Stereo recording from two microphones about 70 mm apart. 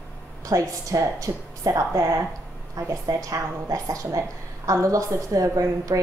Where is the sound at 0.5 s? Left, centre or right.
Right.